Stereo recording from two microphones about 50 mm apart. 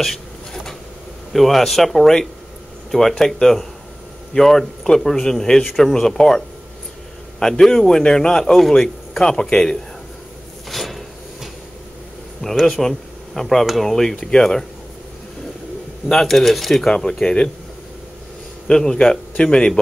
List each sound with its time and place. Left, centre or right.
0.0 s a sound: centre
1.3 s a man's voice: centre
10.7 s a sound: centre
12.4 s a man's voice: centre
16.1 s a man's voice: centre
18.7 s a man's voice: centre